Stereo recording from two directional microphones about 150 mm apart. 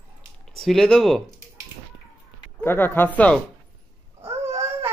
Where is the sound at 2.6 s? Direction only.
15° left (ahead or behind).